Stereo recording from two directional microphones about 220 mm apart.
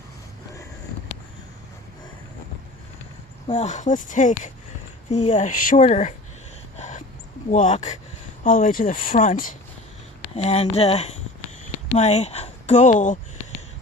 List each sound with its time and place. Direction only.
3.4 s speech: 30° left (ahead or behind)
7.5 s speech: 35° left (ahead or behind)